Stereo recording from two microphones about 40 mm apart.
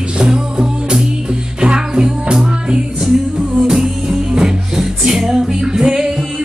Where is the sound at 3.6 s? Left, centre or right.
Centre.